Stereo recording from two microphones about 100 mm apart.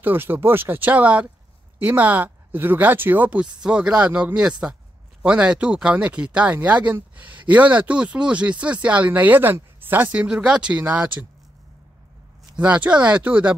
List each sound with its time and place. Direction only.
0.0 s speech: 20° right (ahead or behind)
12.5 s speech: 10° right (ahead or behind)